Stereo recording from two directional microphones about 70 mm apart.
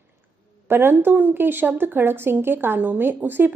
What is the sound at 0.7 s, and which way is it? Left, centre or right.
A woman's voice, right.